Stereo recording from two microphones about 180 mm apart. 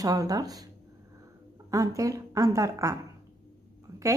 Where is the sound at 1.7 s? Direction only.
20° right (ahead or behind).